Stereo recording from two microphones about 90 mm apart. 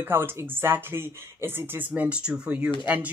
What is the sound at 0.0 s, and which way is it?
Speech, 25° right (ahead or behind).